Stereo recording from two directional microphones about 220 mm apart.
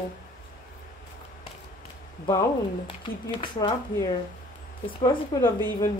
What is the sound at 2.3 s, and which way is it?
Speech, 20° left (ahead or behind).